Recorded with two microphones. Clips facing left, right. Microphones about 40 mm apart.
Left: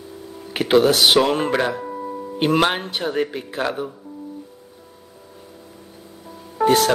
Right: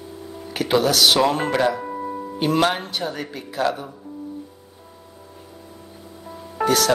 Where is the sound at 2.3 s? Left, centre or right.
Left.